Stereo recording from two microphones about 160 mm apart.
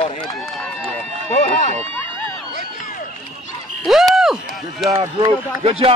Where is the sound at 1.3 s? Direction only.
45° left (ahead or behind).